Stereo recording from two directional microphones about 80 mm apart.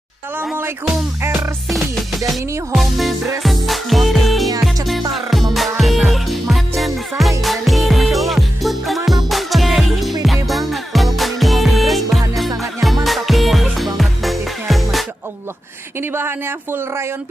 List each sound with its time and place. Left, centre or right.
1.7 s music: centre
16.0 s speech: right